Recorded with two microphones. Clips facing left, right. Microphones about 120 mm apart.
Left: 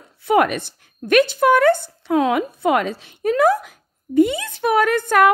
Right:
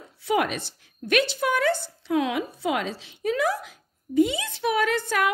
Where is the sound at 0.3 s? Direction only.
55° left (ahead or behind).